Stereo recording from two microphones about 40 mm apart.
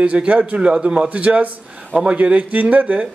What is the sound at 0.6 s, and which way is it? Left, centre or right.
A man's voice, right.